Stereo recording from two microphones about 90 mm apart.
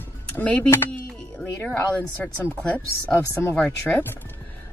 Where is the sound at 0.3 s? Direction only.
20° left (ahead or behind).